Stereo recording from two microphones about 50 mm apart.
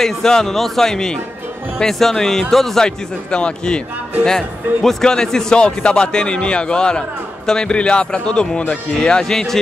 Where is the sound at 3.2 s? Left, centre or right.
Centre.